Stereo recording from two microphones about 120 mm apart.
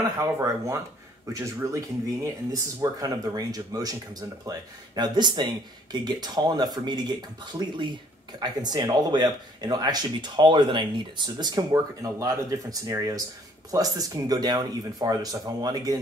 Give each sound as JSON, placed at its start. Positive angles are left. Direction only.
{"t": 0.2, "sound": "speech", "side_deg": -25}
{"t": 2.8, "sound": "speech", "side_deg": -30}